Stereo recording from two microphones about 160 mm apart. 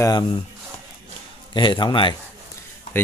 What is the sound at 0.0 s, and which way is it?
Speech, 25° left (ahead or behind).